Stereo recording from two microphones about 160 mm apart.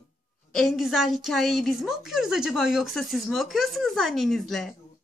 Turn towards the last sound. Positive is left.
turn(degrees=0)  # may be behind; listen again after turning